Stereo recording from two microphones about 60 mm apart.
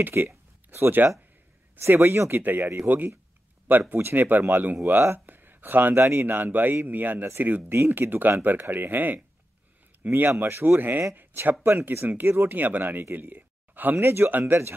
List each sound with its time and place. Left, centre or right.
0.0 s speech: right
0.3 s a sound: right
1.8 s speech: right
3.9 s speech: right
12.1 s speech: right